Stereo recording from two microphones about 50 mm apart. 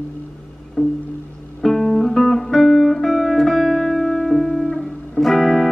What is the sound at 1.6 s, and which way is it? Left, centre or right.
Music, centre.